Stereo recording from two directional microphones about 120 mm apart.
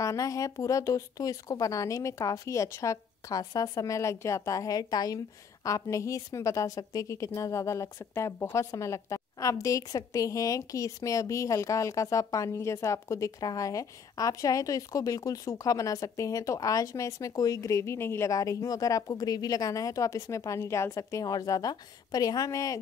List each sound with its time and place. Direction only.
0.0 s a woman's voice: 25° left (ahead or behind)